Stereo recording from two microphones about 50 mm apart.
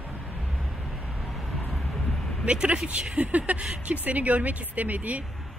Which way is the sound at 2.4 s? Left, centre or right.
Right.